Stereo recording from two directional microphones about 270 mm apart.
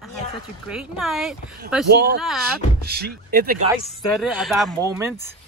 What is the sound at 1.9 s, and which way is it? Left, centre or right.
Speech, right.